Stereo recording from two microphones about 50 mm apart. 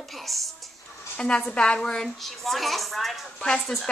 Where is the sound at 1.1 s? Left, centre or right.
Left.